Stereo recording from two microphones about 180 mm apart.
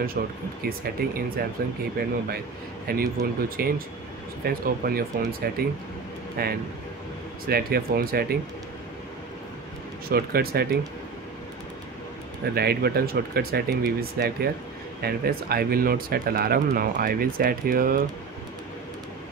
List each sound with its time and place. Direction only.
0.7 s speech: 55° right (ahead or behind)
10.0 s speech: 60° right (ahead or behind)
12.5 s speech: 60° right (ahead or behind)